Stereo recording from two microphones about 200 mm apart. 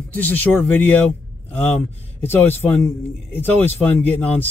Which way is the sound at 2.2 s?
10° left (ahead or behind).